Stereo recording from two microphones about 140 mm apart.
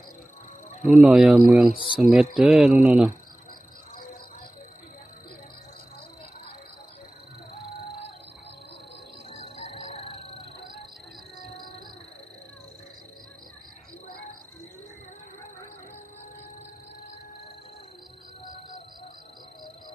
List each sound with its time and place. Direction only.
0.8 s speech: centre (ahead or behind)
9.3 s music: 55° left (ahead or behind)
11.3 s music: 85° left